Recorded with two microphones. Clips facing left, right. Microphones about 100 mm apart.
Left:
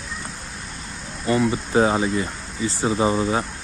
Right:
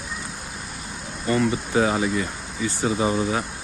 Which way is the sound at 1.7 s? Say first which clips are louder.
Left 3 dB; 30° left (ahead or behind).